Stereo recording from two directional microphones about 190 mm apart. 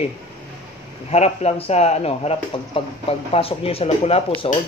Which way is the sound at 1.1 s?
35° left (ahead or behind).